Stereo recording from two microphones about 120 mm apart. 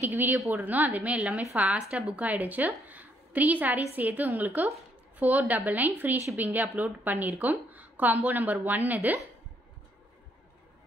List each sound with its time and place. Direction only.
0.0 s speech: 15° right (ahead or behind)